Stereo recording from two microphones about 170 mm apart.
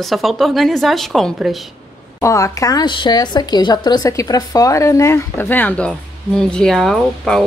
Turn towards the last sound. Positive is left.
turn(degrees=5)  # may be behind; listen again after turning